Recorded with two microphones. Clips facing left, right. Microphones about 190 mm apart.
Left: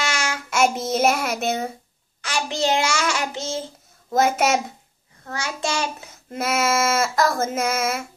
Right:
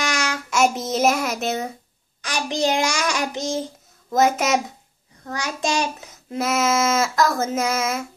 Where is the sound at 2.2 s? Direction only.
15° right (ahead or behind).